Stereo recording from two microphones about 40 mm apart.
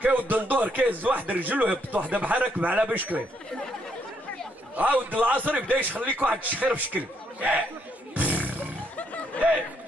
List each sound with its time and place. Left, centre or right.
0.0 s speech: right
4.7 s speech: right
8.1 s roaring cats: right
8.9 s music: left